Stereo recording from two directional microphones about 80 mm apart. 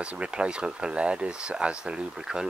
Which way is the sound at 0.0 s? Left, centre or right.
Centre.